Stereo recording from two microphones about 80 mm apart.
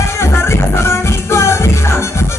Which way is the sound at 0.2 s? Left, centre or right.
Left.